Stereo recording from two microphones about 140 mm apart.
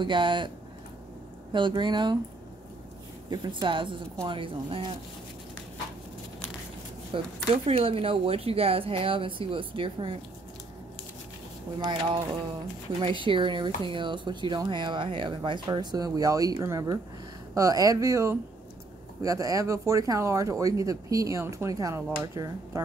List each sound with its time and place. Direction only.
0.0 s speech: 35° right (ahead or behind)
1.5 s speech: 35° right (ahead or behind)
3.3 s speech: 30° right (ahead or behind)
7.1 s speech: 40° right (ahead or behind)
11.8 s speech: 35° right (ahead or behind)